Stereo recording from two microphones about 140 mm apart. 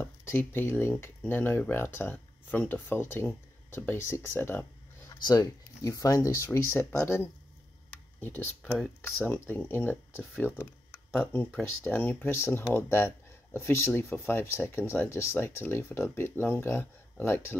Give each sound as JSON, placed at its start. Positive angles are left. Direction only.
{"t": 0.0, "sound": "speech", "side_deg": 15}
{"t": 7.9, "sound": "speech", "side_deg": 10}